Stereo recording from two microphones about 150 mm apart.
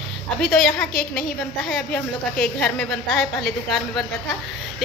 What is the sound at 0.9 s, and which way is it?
Speech, 70° left (ahead or behind).